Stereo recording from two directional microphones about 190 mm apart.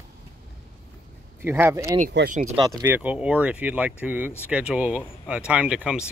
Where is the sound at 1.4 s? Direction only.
10° right (ahead or behind).